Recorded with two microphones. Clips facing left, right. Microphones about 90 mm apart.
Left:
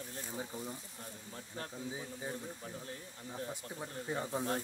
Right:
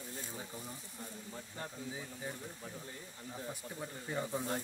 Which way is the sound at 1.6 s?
Centre (ahead or behind).